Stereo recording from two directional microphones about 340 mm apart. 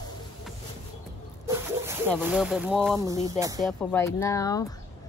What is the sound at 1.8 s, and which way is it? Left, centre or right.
Speech, centre.